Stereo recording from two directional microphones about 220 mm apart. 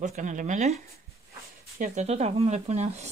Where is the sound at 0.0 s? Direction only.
35° right (ahead or behind).